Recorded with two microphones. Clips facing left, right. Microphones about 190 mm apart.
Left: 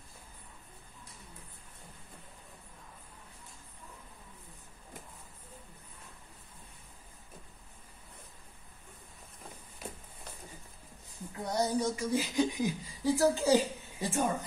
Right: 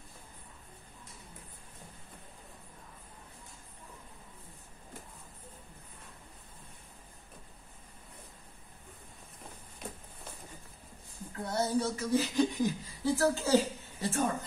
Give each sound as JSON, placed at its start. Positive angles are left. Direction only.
{"t": 11.3, "sound": "speech", "side_deg": 15}